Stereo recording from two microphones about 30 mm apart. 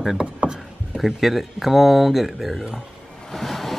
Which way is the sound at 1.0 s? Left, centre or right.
Centre.